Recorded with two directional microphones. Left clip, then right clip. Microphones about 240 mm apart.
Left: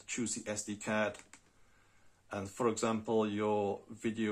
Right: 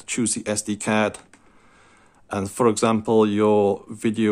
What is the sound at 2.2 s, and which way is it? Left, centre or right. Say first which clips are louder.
Speech: right 14 dB; right.